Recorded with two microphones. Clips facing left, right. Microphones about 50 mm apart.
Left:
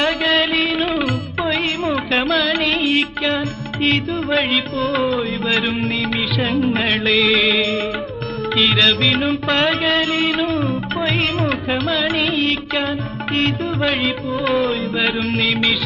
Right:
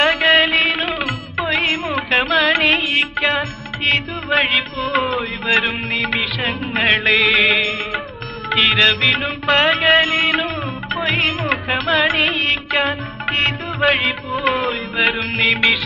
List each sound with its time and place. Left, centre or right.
0.0 s a sound: right
1.5 s carnatic music: right
2.8 s music: right
3.2 s music: right
3.9 s music: right
5.9 s music: right
10.6 s music: right